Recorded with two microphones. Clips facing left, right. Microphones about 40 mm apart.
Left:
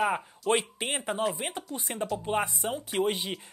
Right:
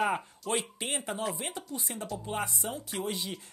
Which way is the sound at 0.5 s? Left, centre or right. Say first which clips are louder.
Left 4 dB; left.